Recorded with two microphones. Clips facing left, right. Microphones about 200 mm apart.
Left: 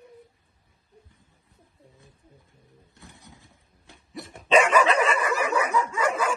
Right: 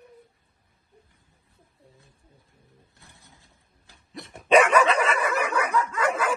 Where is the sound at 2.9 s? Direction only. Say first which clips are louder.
Left 6 dB; 15° left (ahead or behind).